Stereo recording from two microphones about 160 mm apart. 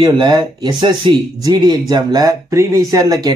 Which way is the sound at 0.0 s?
30° right (ahead or behind).